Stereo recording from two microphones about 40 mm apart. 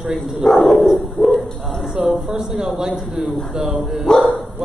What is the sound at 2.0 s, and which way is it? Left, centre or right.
A man's voice, right.